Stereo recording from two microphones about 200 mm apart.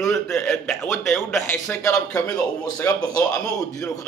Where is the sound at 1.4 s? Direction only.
15° left (ahead or behind).